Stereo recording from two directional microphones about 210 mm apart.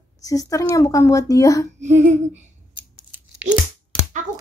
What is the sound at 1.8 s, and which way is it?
Humming, 35° right (ahead or behind).